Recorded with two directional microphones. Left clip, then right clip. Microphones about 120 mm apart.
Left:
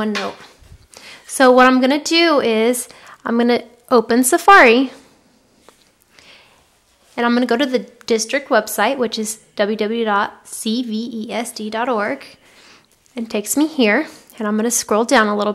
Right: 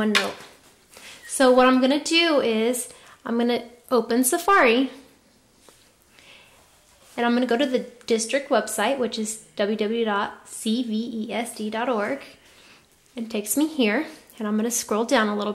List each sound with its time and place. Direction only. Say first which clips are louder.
0.9 s a woman's voice: left 6 dB; 40° left (ahead or behind)
5.7 s a sound: left 4 dB; 35° left (ahead or behind)
7.2 s a woman's voice: left 5 dB; 40° left (ahead or behind)